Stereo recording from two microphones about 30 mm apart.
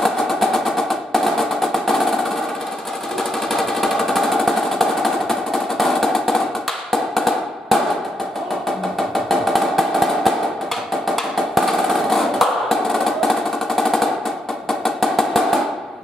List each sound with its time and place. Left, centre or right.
0.0 s percussion: centre
3.5 s a sound: centre
6.9 s music: centre
9.1 s music: centre
14.7 s drum: centre